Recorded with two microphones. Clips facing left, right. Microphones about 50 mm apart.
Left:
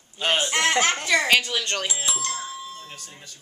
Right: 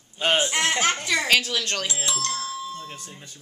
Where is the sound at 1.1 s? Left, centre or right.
Centre.